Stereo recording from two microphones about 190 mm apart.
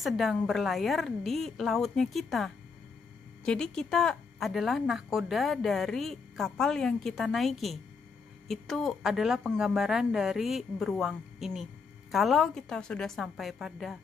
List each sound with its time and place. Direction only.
0.0 s speech: centre (ahead or behind)